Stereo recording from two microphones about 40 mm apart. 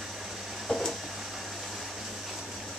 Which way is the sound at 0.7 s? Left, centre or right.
Centre.